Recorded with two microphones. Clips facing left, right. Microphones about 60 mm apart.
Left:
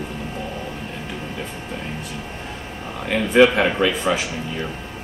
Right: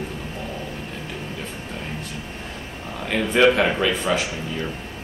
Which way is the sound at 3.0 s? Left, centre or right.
Centre.